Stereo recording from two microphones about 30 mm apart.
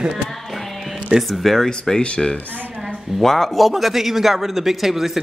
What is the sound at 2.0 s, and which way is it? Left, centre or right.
Speech, left.